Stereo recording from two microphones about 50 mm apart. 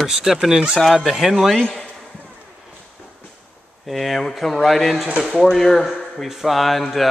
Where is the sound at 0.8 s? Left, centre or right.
Centre.